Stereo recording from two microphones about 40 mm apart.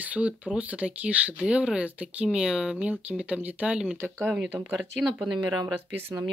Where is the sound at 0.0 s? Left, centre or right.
Right; by 2.8 s centre.